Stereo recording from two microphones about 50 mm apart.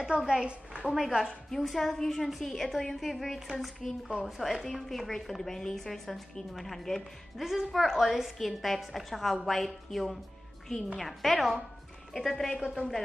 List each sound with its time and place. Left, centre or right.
0.3 s a woman's voice: right
0.9 s a woman's voice: centre
1.5 s speech: centre
12.5 s speech: centre